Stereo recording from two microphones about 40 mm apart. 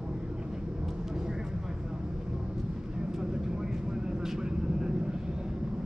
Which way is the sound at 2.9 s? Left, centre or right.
Centre.